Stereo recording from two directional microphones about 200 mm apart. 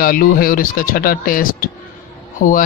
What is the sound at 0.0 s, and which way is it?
Speech, 45° left (ahead or behind).